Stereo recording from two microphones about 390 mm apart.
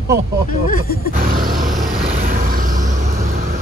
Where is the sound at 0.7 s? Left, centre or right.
Left.